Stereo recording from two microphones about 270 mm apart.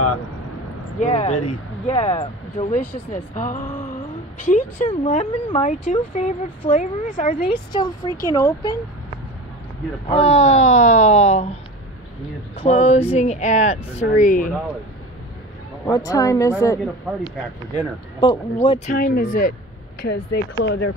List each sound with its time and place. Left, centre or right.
0.9 s speech: left; by 8.7 s centre
10.0 s speech: left
12.6 s speech: left
15.9 s speech: centre
18.6 s speech: left